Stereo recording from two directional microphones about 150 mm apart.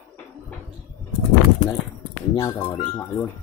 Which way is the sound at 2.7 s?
35° left (ahead or behind).